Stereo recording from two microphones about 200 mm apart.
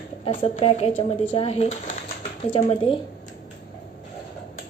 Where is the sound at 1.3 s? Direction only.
30° left (ahead or behind).